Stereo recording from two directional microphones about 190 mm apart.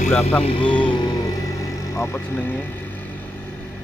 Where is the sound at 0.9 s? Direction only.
25° left (ahead or behind).